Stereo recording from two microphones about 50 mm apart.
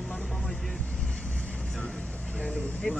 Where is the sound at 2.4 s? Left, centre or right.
Left.